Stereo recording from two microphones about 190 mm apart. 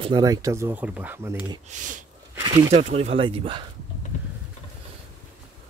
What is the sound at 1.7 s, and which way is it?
Speech, 40° right (ahead or behind).